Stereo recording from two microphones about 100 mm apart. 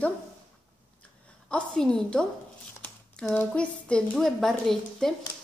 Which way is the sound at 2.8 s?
25° left (ahead or behind).